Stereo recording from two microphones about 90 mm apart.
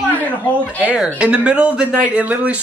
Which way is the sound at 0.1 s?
15° left (ahead or behind).